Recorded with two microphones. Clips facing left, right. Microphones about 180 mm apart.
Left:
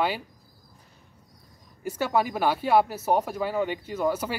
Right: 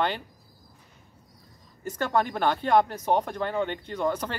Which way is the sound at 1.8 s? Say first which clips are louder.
Left 1 dB; 10° left (ahead or behind).